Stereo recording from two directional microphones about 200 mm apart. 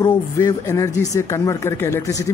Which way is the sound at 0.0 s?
20° left (ahead or behind).